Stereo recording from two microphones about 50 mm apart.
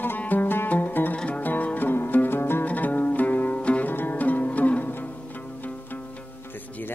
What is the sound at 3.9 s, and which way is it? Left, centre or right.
Music, left.